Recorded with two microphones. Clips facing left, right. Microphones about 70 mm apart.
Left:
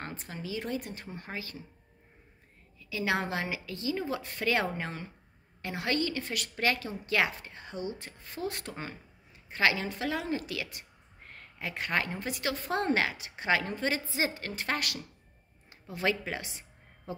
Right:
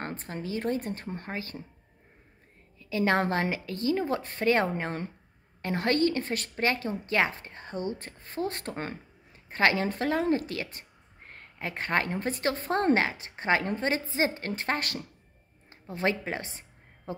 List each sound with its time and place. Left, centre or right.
0.0 s a woman's voice: right
2.8 s a woman's voice: right
8.7 s a woman's voice: right
15.7 s music: right